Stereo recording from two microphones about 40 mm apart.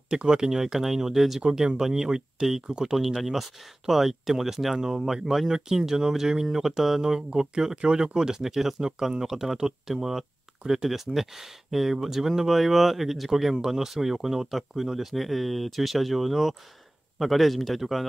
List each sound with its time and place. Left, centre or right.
0.1 s speech: centre
1.4 s speech: centre
4.7 s speech: right
5.0 s a man's voice: centre